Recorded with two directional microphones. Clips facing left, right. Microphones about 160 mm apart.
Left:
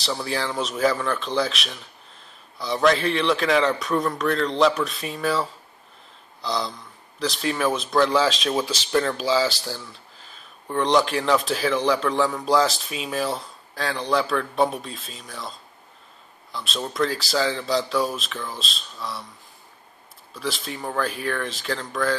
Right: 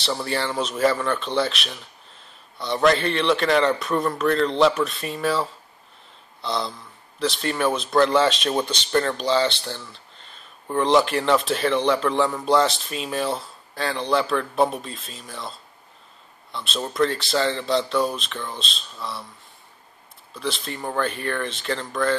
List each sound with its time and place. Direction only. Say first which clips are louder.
0.0 s speech: right 1 dB; centre (ahead or behind)
16.5 s speech: right 2 dB; centre (ahead or behind)
20.3 s speech: right 1 dB; centre (ahead or behind)